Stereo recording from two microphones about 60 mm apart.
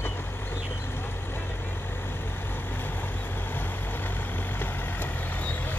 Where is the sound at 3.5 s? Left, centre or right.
Left.